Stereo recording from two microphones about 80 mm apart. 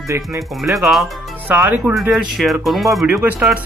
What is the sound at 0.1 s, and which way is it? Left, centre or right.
Speech, right.